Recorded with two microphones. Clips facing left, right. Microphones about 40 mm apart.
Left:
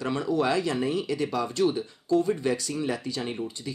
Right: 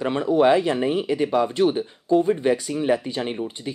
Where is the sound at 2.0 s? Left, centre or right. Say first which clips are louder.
Right 5 dB; right.